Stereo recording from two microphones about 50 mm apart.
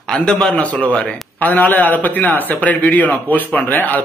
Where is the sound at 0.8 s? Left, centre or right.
Left.